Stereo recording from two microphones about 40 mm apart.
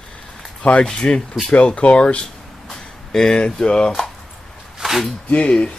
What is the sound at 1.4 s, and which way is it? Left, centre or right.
Speech, left.